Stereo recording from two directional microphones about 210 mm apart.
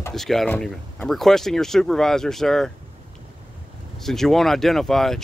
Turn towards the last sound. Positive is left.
turn(degrees=0)  # may be behind; listen again after turning